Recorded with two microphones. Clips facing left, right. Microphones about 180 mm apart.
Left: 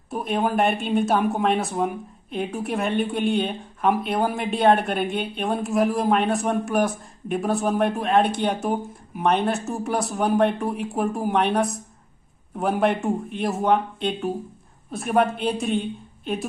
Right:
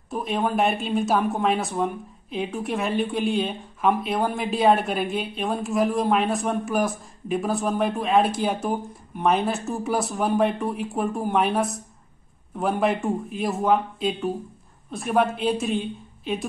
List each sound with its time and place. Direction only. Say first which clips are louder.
0.1 s speech: left 1 dB; centre (ahead or behind)